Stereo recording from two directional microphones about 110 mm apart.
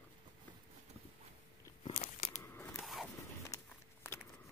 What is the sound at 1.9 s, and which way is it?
Crunch, 90° left.